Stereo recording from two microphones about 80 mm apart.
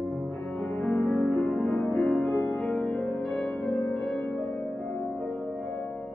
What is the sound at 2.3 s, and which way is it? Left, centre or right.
Music, left.